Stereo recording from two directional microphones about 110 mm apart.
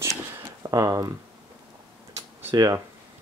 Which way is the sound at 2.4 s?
30° right (ahead or behind).